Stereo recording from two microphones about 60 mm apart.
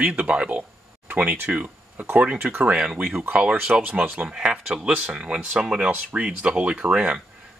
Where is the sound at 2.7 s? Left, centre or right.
Centre.